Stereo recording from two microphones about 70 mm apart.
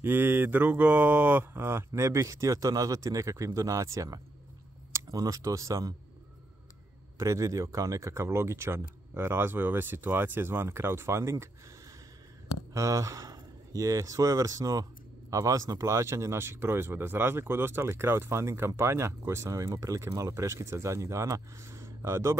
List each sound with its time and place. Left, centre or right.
0.0 s speech: right
7.2 s speech: right
12.7 s speech: right